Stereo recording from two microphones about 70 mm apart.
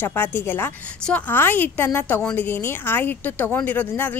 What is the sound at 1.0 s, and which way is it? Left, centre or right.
Speech, left.